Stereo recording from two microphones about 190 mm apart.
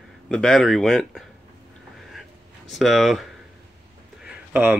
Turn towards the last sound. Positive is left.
turn(degrees=-5)  # may be behind; listen again after turning